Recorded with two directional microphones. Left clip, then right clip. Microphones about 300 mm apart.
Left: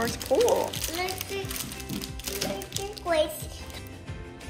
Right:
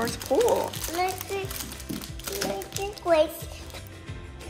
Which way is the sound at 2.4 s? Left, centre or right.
Right.